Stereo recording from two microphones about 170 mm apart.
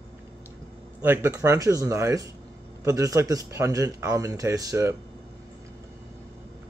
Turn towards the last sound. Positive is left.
turn(degrees=-20)  # may be behind; listen again after turning